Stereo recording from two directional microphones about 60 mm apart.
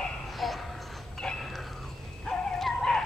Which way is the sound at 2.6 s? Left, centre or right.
Centre.